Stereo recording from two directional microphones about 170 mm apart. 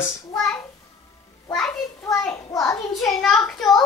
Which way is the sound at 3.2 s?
Centre (ahead or behind).